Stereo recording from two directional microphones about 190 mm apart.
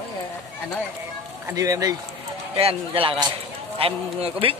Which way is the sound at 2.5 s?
30° right (ahead or behind).